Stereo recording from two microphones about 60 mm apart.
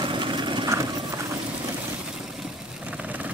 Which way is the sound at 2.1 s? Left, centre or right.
Centre.